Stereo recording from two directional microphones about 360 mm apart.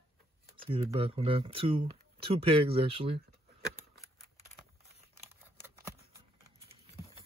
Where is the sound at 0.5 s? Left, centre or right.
Centre.